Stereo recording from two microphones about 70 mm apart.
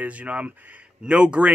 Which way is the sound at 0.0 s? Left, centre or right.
Centre.